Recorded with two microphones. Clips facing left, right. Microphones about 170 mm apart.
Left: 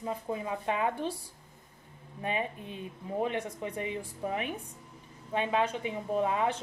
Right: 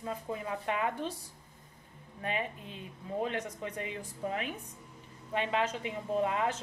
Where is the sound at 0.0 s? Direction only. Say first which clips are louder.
Left 3 dB; 20° left (ahead or behind).